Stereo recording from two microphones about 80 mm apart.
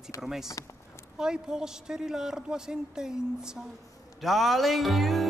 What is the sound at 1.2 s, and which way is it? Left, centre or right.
Speech, centre.